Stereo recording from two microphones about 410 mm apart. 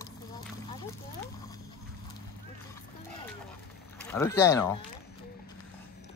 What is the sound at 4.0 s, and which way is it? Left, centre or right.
Speech, centre.